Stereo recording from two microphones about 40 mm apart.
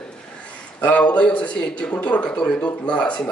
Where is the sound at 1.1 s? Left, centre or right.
Left.